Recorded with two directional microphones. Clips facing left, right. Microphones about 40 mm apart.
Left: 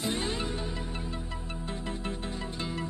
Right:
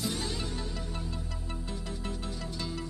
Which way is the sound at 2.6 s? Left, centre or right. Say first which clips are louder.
Left 2 dB; left.